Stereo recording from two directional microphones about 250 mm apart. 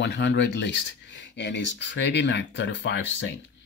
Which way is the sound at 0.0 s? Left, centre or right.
Left.